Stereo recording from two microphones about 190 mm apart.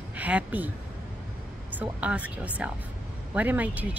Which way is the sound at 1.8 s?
5° right (ahead or behind).